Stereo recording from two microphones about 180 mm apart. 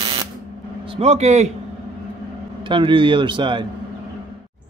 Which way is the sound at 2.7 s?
25° right (ahead or behind).